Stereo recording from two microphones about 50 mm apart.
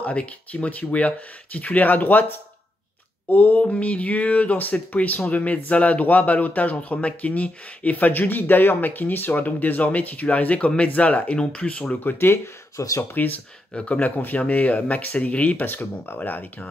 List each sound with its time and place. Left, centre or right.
0.0 s speech: left
3.6 s speech: left
12.0 s speech: left
12.3 s speech: left
13.1 s speech: left
13.7 s speech: left